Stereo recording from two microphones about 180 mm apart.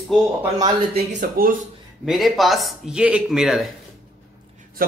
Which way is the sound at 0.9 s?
50° right (ahead or behind).